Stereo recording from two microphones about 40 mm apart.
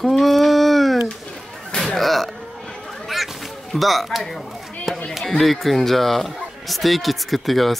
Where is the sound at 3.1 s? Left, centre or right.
Centre.